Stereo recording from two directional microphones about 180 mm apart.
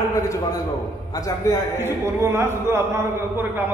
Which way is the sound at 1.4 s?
15° left (ahead or behind).